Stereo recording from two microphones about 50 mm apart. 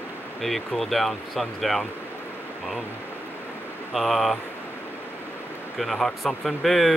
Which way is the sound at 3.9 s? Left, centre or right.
Centre.